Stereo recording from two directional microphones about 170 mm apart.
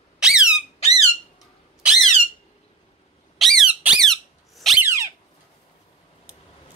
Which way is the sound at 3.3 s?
Centre (ahead or behind).